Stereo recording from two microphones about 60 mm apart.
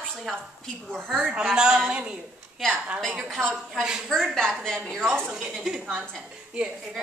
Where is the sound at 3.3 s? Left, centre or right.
Centre.